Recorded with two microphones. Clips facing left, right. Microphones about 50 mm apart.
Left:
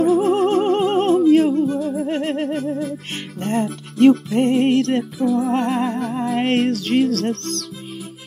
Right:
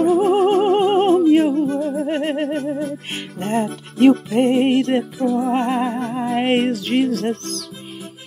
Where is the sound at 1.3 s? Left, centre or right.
Centre.